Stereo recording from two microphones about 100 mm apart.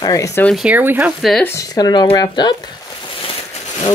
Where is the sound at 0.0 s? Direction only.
35° left (ahead or behind).